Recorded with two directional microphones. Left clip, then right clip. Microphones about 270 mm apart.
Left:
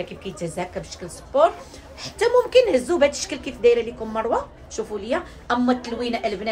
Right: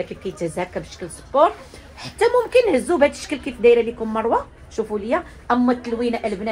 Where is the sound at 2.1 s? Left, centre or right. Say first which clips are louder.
Even; right.